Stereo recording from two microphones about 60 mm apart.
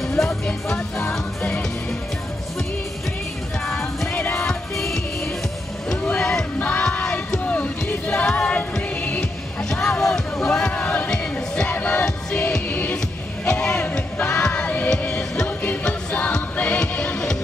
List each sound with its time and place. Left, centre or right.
0.5 s music: centre
3.6 s music: centre
4.1 s music: left
4.5 s music: centre
6.0 s music: centre
9.2 s music: centre
10.7 s music: left
11.1 s music: centre
11.7 s music: left